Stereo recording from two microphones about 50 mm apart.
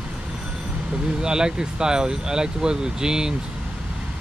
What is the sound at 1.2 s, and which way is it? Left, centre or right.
Speech, centre.